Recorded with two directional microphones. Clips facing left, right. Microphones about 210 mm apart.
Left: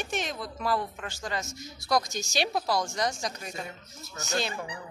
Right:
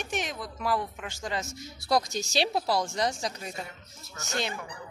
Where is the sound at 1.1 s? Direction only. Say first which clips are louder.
Right 1 dB; 25° right (ahead or behind).